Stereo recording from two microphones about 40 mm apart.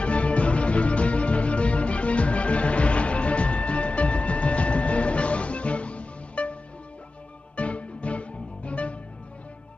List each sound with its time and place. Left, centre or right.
0.0 s music: left
7.5 s music: left